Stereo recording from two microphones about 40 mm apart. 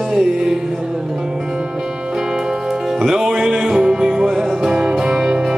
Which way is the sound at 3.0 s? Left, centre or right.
Centre.